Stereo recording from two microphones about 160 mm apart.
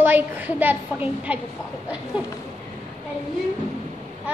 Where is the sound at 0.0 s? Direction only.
10° right (ahead or behind).